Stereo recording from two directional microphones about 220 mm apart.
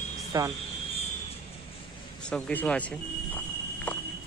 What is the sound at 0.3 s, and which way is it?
Speech, 15° right (ahead or behind).